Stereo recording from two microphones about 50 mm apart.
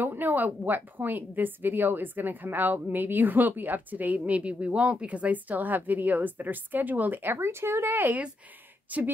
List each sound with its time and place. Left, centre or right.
0.0 s a woman's voice: right
7.3 s speech: right
7.9 s a woman's voice: right